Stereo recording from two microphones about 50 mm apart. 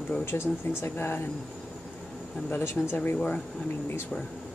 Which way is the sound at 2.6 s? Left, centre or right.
Left.